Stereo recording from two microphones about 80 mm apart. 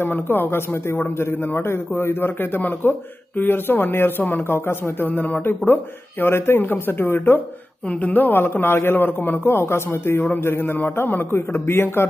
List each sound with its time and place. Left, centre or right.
0.0 s a man's voice: left